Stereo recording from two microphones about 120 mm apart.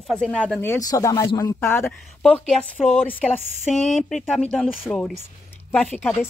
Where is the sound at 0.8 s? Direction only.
30° left (ahead or behind).